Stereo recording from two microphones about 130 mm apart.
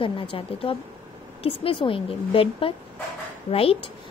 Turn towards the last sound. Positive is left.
turn(degrees=45)  # may be behind; listen again after turning